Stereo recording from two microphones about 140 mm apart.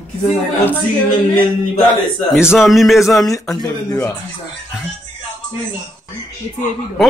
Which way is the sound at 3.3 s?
25° left (ahead or behind).